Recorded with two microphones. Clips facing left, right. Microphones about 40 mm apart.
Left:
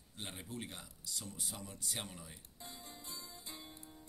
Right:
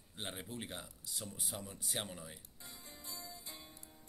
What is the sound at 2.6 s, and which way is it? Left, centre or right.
Music, left.